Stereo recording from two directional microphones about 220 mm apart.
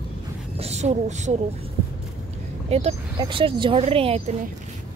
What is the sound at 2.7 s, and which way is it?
Speech, 25° right (ahead or behind).